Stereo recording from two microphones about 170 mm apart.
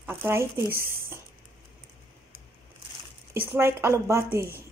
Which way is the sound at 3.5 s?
15° right (ahead or behind).